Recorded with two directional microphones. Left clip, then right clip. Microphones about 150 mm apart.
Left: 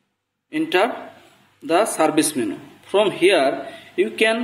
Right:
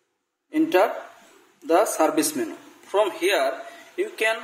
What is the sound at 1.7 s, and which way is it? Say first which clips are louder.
A man's voice: left 2 dB; 45° right (ahead or behind).